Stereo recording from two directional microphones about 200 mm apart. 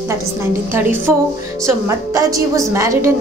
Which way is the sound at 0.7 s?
10° right (ahead or behind).